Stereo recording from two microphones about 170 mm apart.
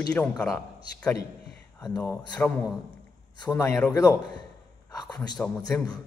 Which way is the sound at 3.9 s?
25° left (ahead or behind).